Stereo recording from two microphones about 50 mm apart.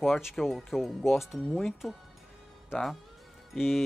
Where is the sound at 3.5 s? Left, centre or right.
Centre.